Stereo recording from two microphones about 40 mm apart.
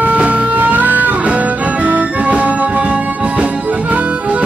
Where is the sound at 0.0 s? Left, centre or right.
Right.